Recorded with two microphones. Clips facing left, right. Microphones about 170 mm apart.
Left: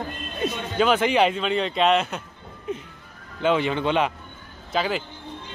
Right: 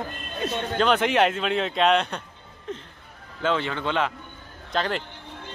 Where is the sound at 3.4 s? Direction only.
15° left (ahead or behind).